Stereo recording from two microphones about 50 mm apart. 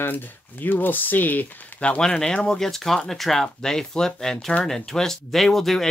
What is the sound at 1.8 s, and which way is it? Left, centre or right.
Speech, centre.